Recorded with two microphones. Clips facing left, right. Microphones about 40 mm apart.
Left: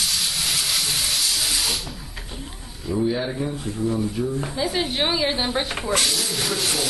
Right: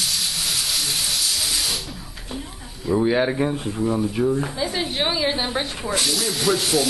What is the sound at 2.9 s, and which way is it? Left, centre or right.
Speech, right.